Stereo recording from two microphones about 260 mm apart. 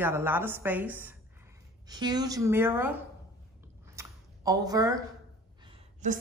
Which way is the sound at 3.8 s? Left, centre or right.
Centre.